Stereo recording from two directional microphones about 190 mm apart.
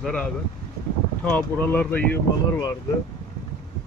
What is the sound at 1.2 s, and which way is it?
Speech, 5° left (ahead or behind).